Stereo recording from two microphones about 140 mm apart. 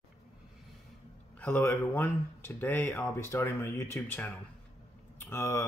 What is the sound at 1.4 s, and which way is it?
Speech, 15° left (ahead or behind).